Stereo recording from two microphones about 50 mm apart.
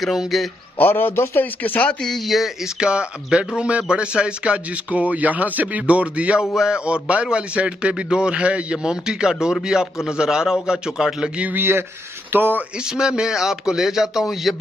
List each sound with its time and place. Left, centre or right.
0.0 s a man's voice: centre
0.7 s a man's voice: left
1.9 s speech: centre
2.1 s a man's voice: centre
2.6 s speech: centre
6.5 s a man's voice: centre
11.5 s speech: right
12.7 s a man's voice: centre